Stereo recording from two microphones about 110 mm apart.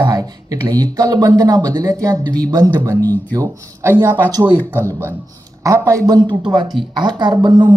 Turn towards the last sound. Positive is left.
turn(degrees=-40)  # may be behind; listen again after turning